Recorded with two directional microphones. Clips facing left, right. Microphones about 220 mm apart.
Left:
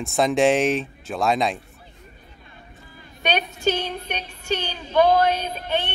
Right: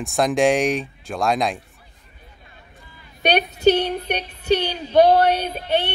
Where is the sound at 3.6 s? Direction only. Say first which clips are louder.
Right 9 dB; 65° right (ahead or behind).